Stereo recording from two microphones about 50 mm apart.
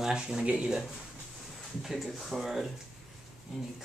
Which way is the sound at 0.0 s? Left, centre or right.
Centre.